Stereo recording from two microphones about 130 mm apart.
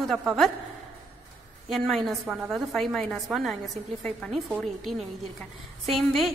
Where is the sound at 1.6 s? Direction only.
Centre (ahead or behind).